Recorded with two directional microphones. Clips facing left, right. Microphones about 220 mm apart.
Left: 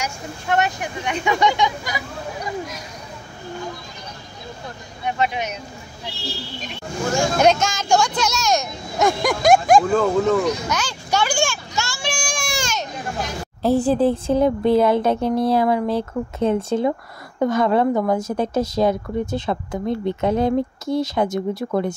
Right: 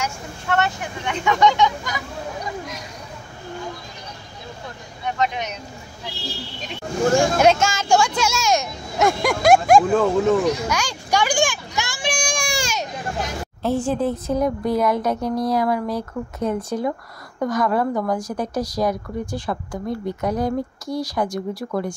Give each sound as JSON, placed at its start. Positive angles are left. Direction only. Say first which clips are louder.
{"t": 0.0, "sound": "speech", "louder": "even", "side_deg": 15}
{"t": 5.2, "sound": "speech", "louder": "left 1 dB", "side_deg": 10}
{"t": 7.3, "sound": "speech", "louder": "even", "side_deg": -5}
{"t": 8.2, "sound": "a sound", "louder": "even", "side_deg": -5}
{"t": 13.6, "sound": "a woman's voice", "louder": "left 4 dB", "side_deg": 35}